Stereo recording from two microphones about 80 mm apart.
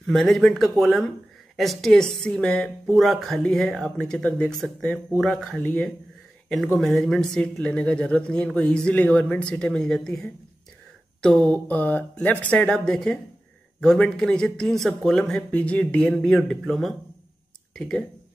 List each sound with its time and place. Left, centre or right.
0.0 s speech: centre
3.0 s speech: centre
4.6 s speech: centre
6.8 s speech: centre